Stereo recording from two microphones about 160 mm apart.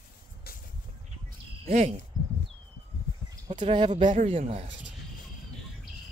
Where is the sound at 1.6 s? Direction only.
45° right (ahead or behind).